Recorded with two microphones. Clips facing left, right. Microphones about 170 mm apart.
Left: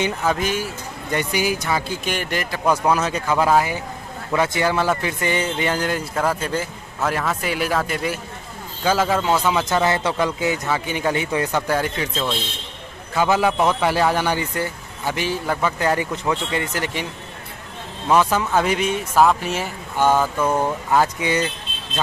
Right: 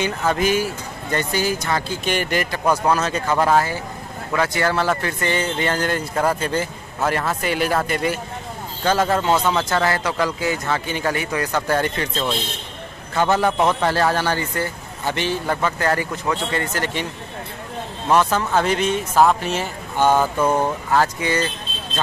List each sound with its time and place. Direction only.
0.3 s speech: 5° right (ahead or behind)
1.1 s a man's voice: 15° left (ahead or behind)
2.9 s a man's voice: 10° left (ahead or behind)
11.5 s a man's voice: 5° left (ahead or behind)
15.8 s a man's voice: 15° left (ahead or behind)
18.0 s a man's voice: 10° left (ahead or behind)
20.1 s a sound: 15° right (ahead or behind)
20.9 s a man's voice: 15° left (ahead or behind)